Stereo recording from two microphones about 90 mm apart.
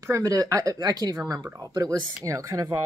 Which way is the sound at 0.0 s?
40° right (ahead or behind).